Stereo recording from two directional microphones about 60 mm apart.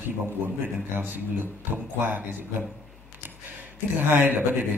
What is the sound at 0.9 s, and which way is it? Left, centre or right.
A man's voice, right.